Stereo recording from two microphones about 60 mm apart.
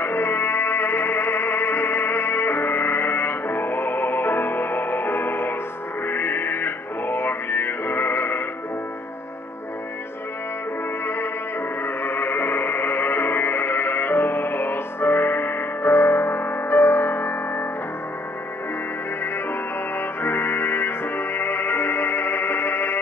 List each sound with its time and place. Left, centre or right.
0.0 s music: left
11.8 s music: left
20.2 s music: left